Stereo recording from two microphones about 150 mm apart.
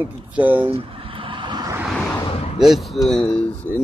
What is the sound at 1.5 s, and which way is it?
Vehicle, 25° right (ahead or behind).